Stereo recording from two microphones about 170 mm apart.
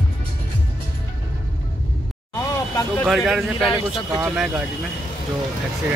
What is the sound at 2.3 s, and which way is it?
Vehicle, 20° left (ahead or behind).